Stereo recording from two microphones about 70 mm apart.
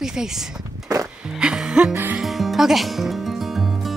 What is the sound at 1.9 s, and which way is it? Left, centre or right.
Music, right.